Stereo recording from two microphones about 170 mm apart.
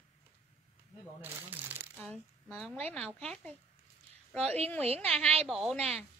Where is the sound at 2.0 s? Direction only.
5° left (ahead or behind).